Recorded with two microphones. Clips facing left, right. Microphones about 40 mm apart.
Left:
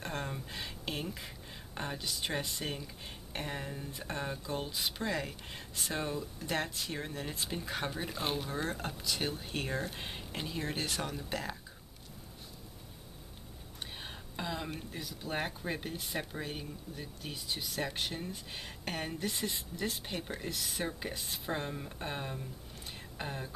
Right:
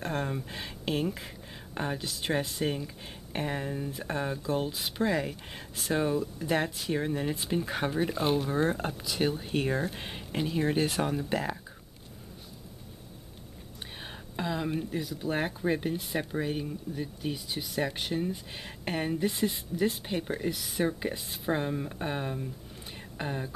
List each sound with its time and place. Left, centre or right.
0.0 s a sound: centre
1.8 s speech: centre
8.2 s speech: centre
8.5 s speech: centre
14.3 s speech: centre